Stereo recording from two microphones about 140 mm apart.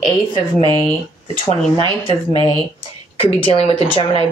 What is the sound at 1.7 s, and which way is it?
Speech, 35° right (ahead or behind).